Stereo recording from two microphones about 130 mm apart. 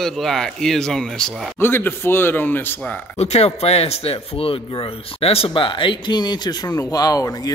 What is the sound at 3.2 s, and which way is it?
Speech, 55° left (ahead or behind).